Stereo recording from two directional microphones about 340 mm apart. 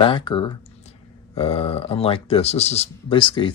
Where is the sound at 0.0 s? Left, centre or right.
Centre.